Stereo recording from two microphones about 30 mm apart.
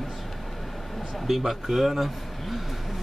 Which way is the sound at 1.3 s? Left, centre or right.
Centre.